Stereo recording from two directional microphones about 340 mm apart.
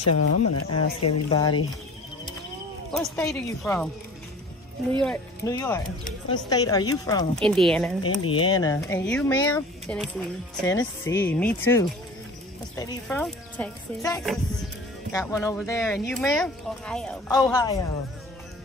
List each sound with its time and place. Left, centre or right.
0.0 s speech: left
1.3 s speech: centre
2.9 s speech: centre
5.0 s speech: centre
8.3 s speech: centre